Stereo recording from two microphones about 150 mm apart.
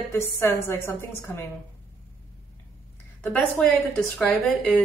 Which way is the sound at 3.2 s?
5° left (ahead or behind).